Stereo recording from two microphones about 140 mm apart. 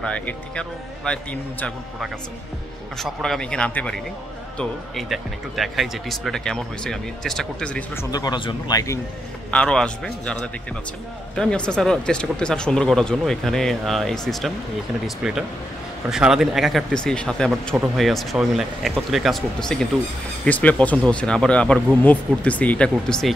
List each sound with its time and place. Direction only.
0.0 s a man's voice: 10° left (ahead or behind)
3.0 s speech: 5° left (ahead or behind)
8.0 s speech: 25° left (ahead or behind)
9.5 s a man's voice: 5° left (ahead or behind)